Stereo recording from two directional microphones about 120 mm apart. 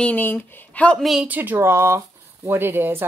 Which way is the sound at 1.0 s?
Centre (ahead or behind).